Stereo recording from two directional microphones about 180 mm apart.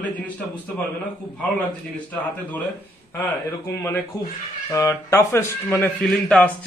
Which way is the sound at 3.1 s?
15° left (ahead or behind).